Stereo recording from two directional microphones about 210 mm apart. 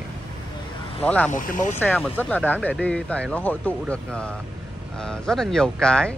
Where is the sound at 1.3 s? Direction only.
40° left (ahead or behind).